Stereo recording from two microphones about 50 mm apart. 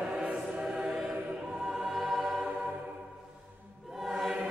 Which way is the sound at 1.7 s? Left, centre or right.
Centre.